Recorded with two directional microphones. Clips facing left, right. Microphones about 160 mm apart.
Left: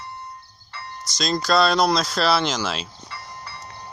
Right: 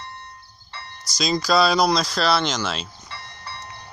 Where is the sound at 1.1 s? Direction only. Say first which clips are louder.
Right 1 dB; centre (ahead or behind).